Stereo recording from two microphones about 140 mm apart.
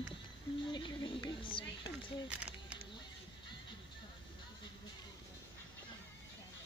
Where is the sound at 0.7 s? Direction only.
35° left (ahead or behind).